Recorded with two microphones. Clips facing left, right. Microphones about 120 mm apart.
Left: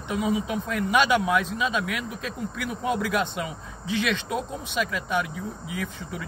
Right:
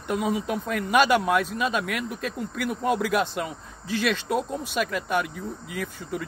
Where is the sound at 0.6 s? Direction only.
45° right (ahead or behind).